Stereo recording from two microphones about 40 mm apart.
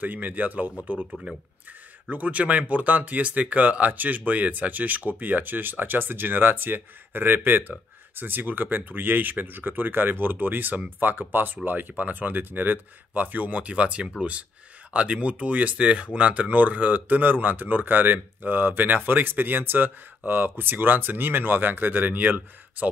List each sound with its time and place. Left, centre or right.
0.0 s speech: right